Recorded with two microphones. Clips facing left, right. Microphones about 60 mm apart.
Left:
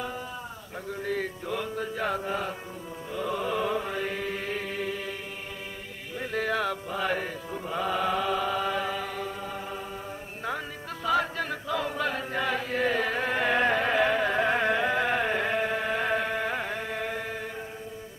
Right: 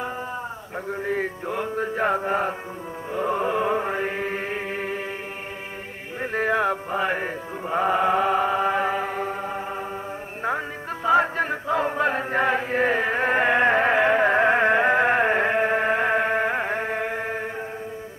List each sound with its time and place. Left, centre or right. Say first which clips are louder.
0.8 s mantra: right 5 dB; right
6.3 s music: right 6 dB; right
11.1 s chant: right 7 dB; right